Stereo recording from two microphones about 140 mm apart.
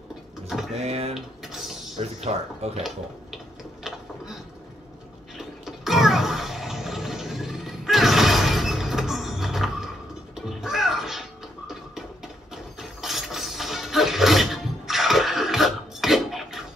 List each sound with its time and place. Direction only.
0.7 s speech: 50° right (ahead or behind)
1.1 s dishes: centre (ahead or behind)
2.1 s speech: 50° right (ahead or behind)
5.4 s toilet flush: centre (ahead or behind)
10.3 s music: centre (ahead or behind)
13.0 s music: centre (ahead or behind)